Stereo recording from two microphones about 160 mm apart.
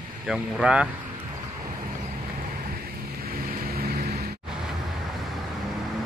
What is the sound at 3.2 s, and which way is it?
Vehicle, 70° right (ahead or behind).